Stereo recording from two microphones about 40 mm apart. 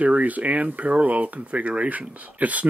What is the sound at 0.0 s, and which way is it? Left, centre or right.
Speech, right.